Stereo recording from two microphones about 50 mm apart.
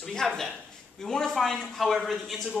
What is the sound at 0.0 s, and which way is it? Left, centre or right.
Speech, centre.